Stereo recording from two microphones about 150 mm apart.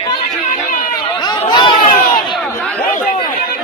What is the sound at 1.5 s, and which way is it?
Chatter, 30° left (ahead or behind).